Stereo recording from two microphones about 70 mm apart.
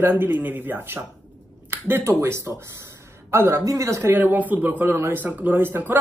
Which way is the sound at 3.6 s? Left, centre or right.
Right.